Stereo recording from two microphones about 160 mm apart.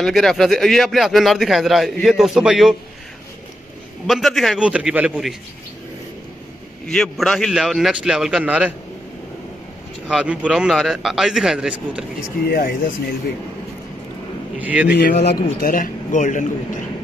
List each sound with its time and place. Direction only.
0.0 s a man's voice: centre (ahead or behind)
4.1 s a man's voice: centre (ahead or behind)
6.9 s a man's voice: 5° left (ahead or behind)
10.0 s a man's voice: 5° right (ahead or behind)
12.4 s a man's voice: 65° left (ahead or behind)
14.6 s a man's voice: 10° right (ahead or behind)
14.9 s a man's voice: 80° left
15.2 s a man's voice: 60° left (ahead or behind)